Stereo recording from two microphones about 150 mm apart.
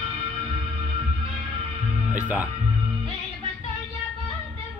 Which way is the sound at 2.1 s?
10° right (ahead or behind).